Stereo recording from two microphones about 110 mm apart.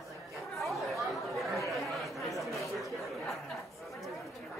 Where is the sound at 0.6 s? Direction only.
Centre (ahead or behind).